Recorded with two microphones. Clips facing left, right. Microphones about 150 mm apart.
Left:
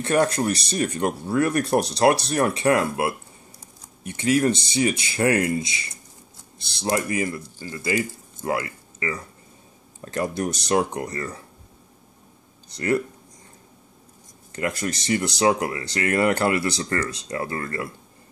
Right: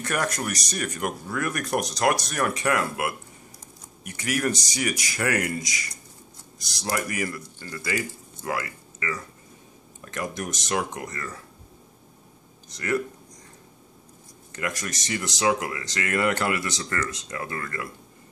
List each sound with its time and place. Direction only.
0.0 s speech: 30° left (ahead or behind)
12.6 s speech: 30° left (ahead or behind)
14.5 s speech: 30° left (ahead or behind)